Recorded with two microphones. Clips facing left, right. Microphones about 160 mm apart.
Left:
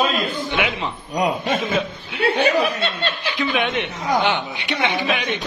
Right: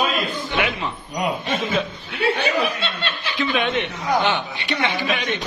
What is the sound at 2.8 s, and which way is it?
Speech, 40° left (ahead or behind).